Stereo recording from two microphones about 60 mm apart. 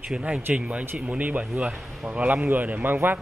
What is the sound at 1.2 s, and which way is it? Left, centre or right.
Speech, right.